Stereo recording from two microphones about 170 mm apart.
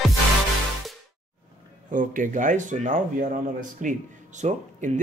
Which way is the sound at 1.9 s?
50° right (ahead or behind).